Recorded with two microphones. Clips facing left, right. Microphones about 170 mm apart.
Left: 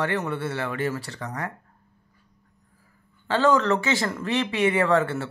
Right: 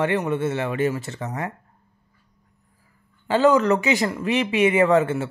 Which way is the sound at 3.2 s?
15° right (ahead or behind).